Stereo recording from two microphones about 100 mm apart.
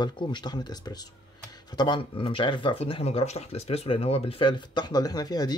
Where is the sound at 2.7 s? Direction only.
75° left (ahead or behind).